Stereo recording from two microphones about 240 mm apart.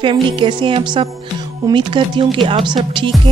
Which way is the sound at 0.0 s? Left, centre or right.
Right.